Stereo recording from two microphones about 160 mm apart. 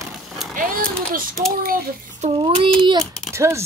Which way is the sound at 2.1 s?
45° right (ahead or behind).